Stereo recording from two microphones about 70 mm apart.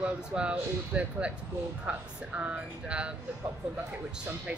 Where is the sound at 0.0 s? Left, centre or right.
Centre.